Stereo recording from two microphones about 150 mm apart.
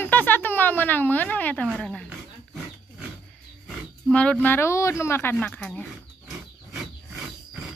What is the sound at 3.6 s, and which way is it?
Speech, 10° left (ahead or behind).